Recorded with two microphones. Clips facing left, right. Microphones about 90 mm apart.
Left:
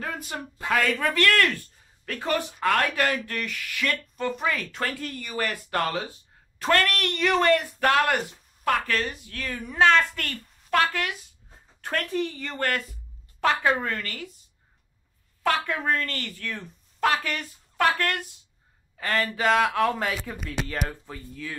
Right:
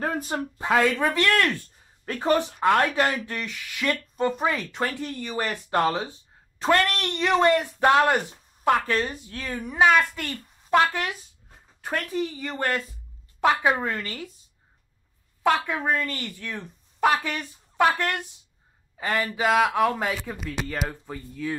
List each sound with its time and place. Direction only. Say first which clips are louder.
0.0 s a sound: right 6 dB; 40° right (ahead or behind)
0.6 s speech: right 3 dB; 20° right (ahead or behind)
11.8 s speech: even; 10° right (ahead or behind)
15.4 s speech: right 2 dB; 15° right (ahead or behind)